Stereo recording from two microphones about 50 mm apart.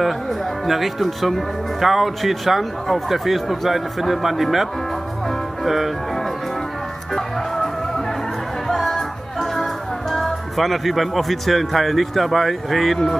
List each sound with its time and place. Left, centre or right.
0.7 s speech: centre
7.2 s vehicle: centre
8.6 s music: centre
10.1 s speech: centre